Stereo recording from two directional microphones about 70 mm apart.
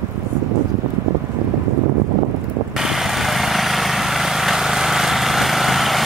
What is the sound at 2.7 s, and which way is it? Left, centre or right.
Vehicle, centre.